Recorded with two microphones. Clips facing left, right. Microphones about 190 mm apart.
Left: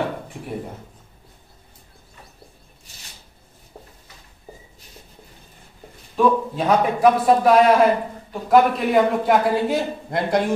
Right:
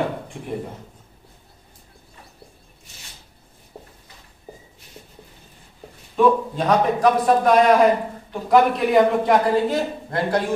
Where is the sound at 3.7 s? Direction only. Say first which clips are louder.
Right 2 dB; 5° right (ahead or behind).